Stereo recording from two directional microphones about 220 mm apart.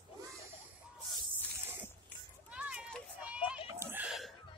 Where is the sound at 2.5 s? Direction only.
5° right (ahead or behind).